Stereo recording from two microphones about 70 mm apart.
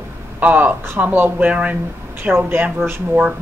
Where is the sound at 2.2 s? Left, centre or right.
Right.